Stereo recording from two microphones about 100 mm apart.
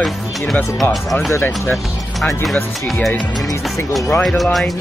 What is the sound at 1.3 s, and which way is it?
Speech, 20° left (ahead or behind).